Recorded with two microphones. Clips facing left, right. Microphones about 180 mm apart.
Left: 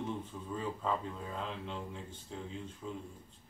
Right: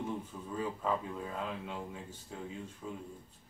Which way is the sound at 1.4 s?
5° right (ahead or behind).